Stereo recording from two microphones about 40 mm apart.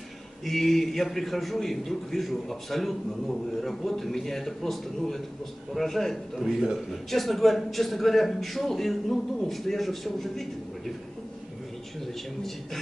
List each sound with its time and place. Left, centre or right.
0.5 s a man's voice: centre